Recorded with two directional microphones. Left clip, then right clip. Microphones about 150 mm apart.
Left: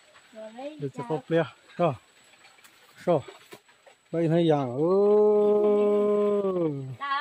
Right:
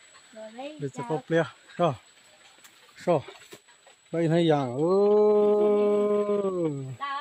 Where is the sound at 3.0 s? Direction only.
10° right (ahead or behind).